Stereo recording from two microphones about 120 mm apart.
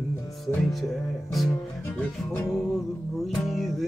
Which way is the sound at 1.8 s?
15° left (ahead or behind).